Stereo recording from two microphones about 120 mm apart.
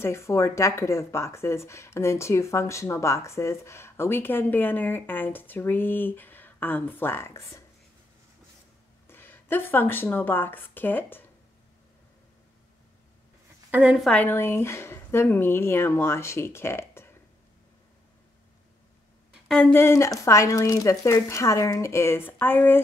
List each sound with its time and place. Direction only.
0.0 s speech: 20° left (ahead or behind)
9.0 s speech: 20° left (ahead or behind)
13.7 s a woman's voice: 15° right (ahead or behind)
14.1 s speech: 15° left (ahead or behind)
19.6 s speech: 20° left (ahead or behind)